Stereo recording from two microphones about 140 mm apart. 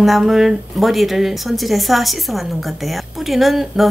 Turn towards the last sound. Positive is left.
turn(degrees=0)  # may be behind; listen again after turning